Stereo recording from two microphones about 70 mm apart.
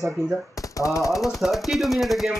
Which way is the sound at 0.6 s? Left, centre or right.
Left.